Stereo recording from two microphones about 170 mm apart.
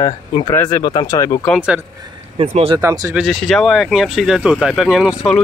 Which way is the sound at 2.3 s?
35° right (ahead or behind).